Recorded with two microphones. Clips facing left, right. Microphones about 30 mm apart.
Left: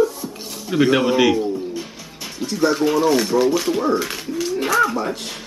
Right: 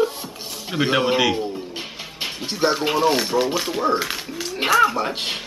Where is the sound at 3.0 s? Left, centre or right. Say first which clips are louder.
Left 1 dB; right.